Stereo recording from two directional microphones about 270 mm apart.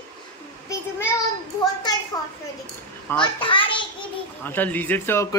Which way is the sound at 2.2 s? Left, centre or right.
Centre.